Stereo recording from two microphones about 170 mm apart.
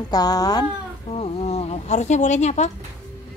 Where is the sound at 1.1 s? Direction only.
40° left (ahead or behind).